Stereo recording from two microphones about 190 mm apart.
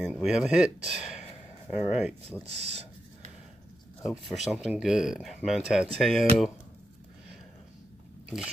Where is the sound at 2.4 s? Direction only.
35° right (ahead or behind).